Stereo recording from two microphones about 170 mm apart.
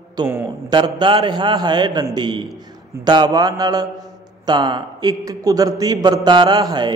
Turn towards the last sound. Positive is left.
turn(degrees=-25)  # may be behind; listen again after turning